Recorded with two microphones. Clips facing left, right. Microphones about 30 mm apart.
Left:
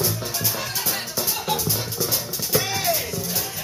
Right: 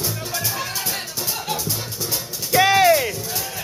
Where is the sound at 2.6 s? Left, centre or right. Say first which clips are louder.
Right 12 dB; right.